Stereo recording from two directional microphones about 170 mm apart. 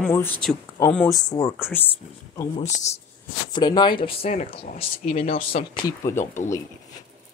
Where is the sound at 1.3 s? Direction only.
20° left (ahead or behind).